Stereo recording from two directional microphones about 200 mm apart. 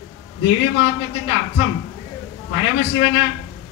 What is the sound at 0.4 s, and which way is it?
Speech, 65° left (ahead or behind).